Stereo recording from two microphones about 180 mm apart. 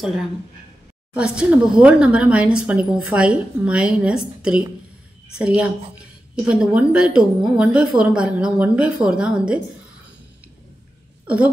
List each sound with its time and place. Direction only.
1.1 s a woman's voice: 5° right (ahead or behind)